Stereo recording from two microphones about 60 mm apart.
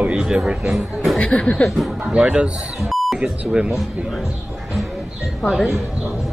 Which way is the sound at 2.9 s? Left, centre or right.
Centre.